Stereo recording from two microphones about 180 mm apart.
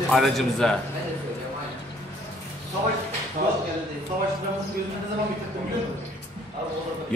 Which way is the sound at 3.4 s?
55° right (ahead or behind).